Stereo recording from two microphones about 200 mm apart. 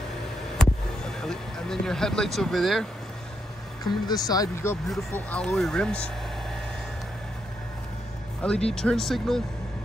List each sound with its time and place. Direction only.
0.6 s a sound: 5° left (ahead or behind)
1.2 s speech: centre (ahead or behind)
3.8 s speech: 20° left (ahead or behind)
8.4 s speech: 5° left (ahead or behind)